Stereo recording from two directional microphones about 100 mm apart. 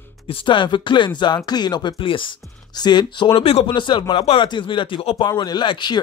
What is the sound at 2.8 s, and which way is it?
Speech, 45° left (ahead or behind).